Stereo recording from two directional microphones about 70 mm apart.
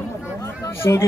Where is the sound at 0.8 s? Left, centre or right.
Left.